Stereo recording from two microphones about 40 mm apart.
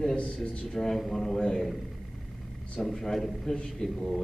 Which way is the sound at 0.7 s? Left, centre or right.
Centre.